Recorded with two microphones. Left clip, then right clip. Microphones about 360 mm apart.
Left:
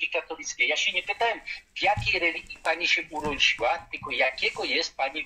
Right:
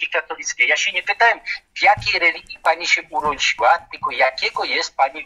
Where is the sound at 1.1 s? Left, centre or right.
Right.